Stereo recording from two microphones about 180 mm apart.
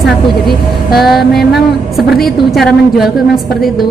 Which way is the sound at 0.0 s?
Centre (ahead or behind).